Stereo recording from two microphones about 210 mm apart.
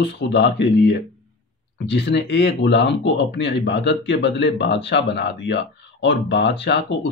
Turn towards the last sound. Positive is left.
turn(degrees=55)  # may be behind; listen again after turning